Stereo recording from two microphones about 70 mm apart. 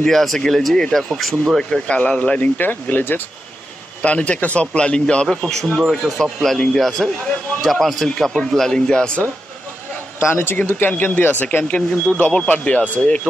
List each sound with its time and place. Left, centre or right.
0.0 s speech: centre
1.6 s speech: centre
4.0 s speech: centre
10.3 s speech: left